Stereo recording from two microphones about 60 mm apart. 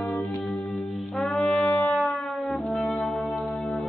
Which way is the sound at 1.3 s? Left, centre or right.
Centre.